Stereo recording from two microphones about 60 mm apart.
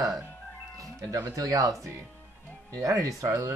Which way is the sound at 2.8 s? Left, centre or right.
Right.